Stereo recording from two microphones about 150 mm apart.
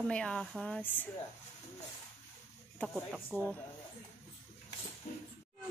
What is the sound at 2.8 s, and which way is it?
Speech, 10° left (ahead or behind).